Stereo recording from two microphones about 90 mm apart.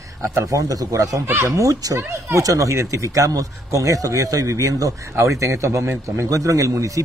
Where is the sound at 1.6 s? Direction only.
40° right (ahead or behind).